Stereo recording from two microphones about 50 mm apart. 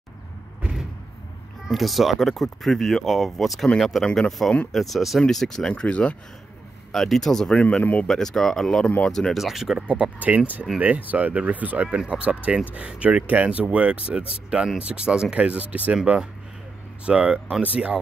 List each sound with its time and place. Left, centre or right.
1.7 s speech: centre; by 6.1 s left
6.9 s speech: centre
7.5 s speech: left
8.1 s speech: centre
9.4 s speech: centre
9.8 s speech: right
15.4 s speech: right
17.0 s speech: right